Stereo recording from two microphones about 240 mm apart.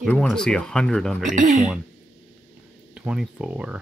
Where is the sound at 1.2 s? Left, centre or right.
Right.